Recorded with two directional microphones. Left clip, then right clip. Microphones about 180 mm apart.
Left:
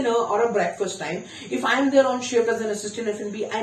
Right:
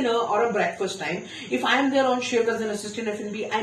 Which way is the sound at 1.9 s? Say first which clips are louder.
Left 3 dB; 25° left (ahead or behind).